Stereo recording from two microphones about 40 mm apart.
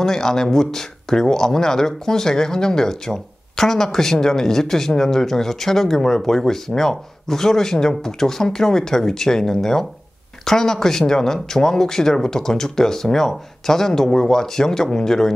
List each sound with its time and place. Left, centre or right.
0.0 s speech: centre